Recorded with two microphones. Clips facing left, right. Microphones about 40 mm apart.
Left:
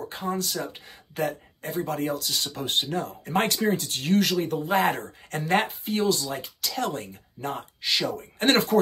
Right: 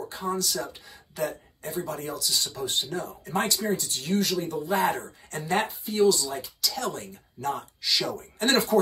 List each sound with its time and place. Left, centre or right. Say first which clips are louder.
0.1 s speech: even; left